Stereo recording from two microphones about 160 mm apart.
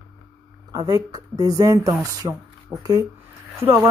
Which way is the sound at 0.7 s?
25° right (ahead or behind).